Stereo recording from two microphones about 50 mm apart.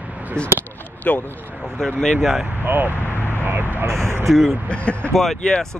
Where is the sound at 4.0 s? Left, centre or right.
Right.